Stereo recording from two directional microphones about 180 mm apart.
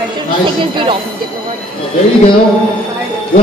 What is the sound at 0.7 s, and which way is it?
Speech, 30° right (ahead or behind).